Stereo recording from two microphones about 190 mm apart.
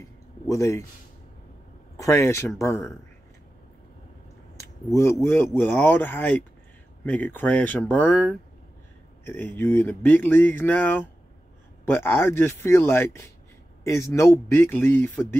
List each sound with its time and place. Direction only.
0.0 s a sound: 15° left (ahead or behind)
2.0 s speech: 15° left (ahead or behind)
4.9 s speech: 15° left (ahead or behind)